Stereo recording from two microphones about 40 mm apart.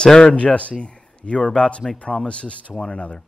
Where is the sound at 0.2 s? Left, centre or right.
Left.